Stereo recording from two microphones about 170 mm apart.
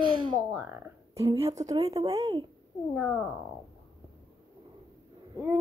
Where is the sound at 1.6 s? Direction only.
45° right (ahead or behind).